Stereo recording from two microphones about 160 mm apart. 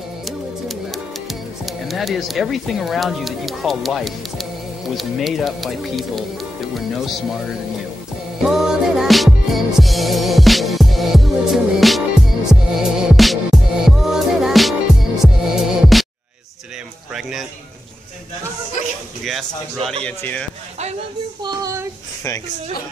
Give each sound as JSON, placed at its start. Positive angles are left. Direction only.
{"t": 0.2, "sound": "music", "side_deg": 0}
{"t": 4.9, "sound": "speech", "side_deg": 0}
{"t": 8.4, "sound": "music", "side_deg": -5}
{"t": 17.1, "sound": "a sound", "side_deg": 0}
{"t": 19.8, "sound": "a man's voice", "side_deg": -40}
{"t": 20.1, "sound": "speech", "side_deg": 10}
{"t": 21.4, "sound": "a sound", "side_deg": -25}